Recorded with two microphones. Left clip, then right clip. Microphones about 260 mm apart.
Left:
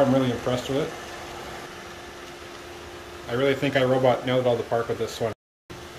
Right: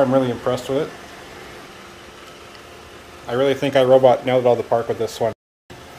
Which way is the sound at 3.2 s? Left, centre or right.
Centre.